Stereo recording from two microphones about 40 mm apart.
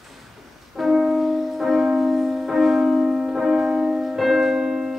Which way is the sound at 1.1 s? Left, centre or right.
Centre.